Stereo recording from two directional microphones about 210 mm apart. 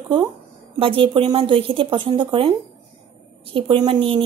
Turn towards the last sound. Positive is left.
turn(degrees=-25)  # may be behind; listen again after turning